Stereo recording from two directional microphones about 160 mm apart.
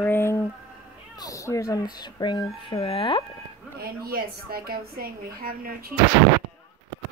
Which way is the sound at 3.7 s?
70° right (ahead or behind).